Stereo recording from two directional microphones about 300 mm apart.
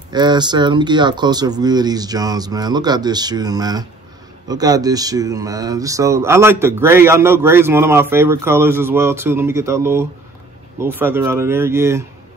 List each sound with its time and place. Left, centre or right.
0.1 s speech: centre